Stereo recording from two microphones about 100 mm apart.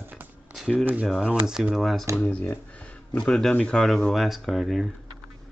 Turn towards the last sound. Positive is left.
turn(degrees=0)  # may be behind; listen again after turning